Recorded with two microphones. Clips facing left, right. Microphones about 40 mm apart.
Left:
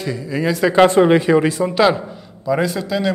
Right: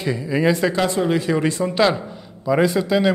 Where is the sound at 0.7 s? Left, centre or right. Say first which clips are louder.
Left 8 dB; left.